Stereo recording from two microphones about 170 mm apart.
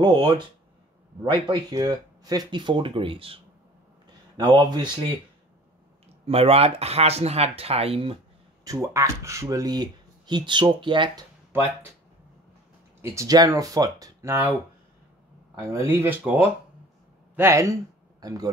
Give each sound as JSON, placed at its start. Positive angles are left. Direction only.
{"t": 0.0, "sound": "speech", "side_deg": -25}
{"t": 4.4, "sound": "speech", "side_deg": -25}
{"t": 6.2, "sound": "speech", "side_deg": -35}
{"t": 8.6, "sound": "speech", "side_deg": -15}
{"t": 13.0, "sound": "speech", "side_deg": -15}
{"t": 15.9, "sound": "a man's voice", "side_deg": -15}